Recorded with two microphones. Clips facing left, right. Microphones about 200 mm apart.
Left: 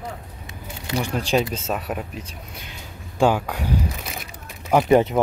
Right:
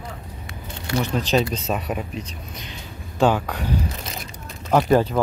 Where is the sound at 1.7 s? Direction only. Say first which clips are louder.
Right 1 dB; centre (ahead or behind).